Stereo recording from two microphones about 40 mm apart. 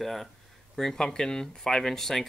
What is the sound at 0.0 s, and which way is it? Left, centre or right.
Speech, centre.